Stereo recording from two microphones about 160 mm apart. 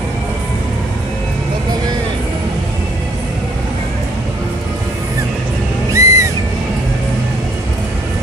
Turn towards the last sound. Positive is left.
turn(degrees=-20)  # may be behind; listen again after turning